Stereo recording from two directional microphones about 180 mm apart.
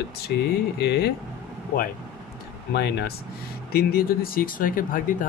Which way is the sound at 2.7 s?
65° left (ahead or behind).